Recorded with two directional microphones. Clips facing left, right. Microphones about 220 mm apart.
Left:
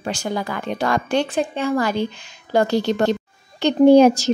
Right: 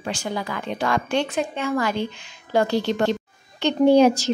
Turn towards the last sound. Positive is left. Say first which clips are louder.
# left 4 dB
turn(degrees=45)  # may be behind; listen again after turning